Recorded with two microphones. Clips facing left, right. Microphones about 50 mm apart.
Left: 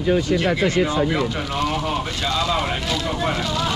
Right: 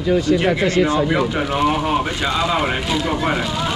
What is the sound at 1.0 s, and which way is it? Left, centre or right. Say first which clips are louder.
Speech: right 3 dB; centre.